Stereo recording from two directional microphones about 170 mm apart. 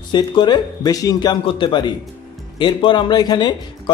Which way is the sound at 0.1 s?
25° left (ahead or behind).